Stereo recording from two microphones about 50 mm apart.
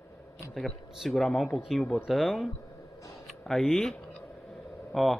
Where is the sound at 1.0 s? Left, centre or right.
Centre.